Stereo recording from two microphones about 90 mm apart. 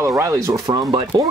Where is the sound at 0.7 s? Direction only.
50° right (ahead or behind).